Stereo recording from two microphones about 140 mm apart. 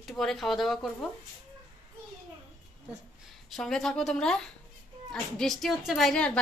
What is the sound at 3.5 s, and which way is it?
A woman's voice, 5° left (ahead or behind).